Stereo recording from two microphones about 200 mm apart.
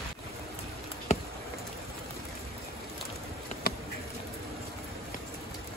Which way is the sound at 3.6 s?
50° left (ahead or behind).